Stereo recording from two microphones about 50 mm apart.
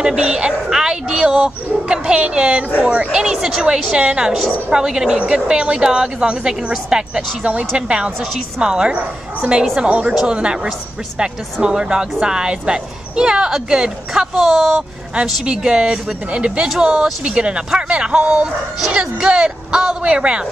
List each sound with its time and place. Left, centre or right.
0.0 s speech: centre
3.2 s speech: centre